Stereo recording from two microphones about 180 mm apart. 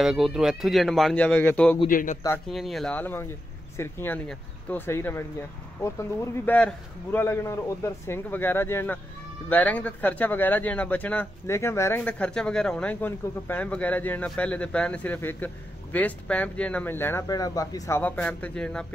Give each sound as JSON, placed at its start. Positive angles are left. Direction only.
{"t": 0.0, "sound": "speech", "side_deg": -5}
{"t": 1.9, "sound": "a man's voice", "side_deg": 50}
{"t": 2.4, "sound": "speech", "side_deg": 0}